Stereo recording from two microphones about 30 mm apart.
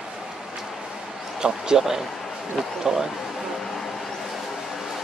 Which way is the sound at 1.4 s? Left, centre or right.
Right.